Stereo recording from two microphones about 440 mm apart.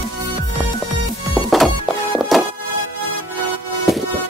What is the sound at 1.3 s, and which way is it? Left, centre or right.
Music, centre.